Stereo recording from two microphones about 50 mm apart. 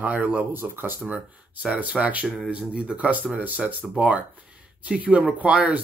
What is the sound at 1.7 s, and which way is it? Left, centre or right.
Speech, right.